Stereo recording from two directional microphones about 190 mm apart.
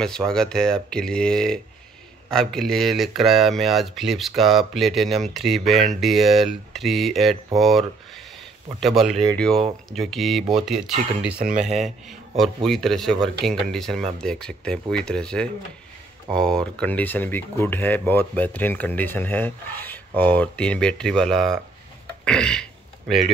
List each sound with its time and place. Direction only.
0.0 s speech: 5° left (ahead or behind)
9.1 s speech: 30° right (ahead or behind)
9.8 s speech: centre (ahead or behind)
11.3 s speech: 45° right (ahead or behind)
12.6 s speech: centre (ahead or behind)
22.2 s burping: 5° left (ahead or behind)